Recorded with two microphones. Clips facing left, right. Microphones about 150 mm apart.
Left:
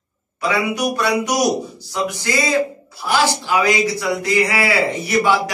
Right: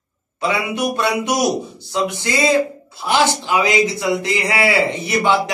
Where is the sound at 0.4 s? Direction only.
25° right (ahead or behind).